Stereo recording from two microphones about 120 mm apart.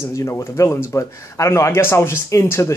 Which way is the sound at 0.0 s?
25° left (ahead or behind).